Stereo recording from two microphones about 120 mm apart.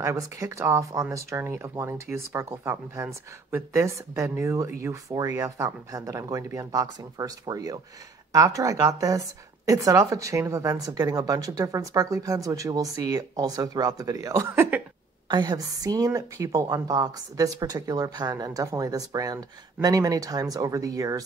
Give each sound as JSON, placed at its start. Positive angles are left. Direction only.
{"t": 0.0, "sound": "speech", "side_deg": -25}
{"t": 15.2, "sound": "a woman's voice", "side_deg": -35}